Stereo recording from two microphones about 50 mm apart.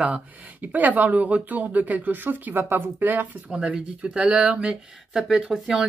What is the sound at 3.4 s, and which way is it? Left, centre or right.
Speech, right.